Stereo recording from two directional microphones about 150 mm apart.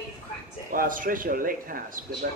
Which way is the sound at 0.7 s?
65° right (ahead or behind).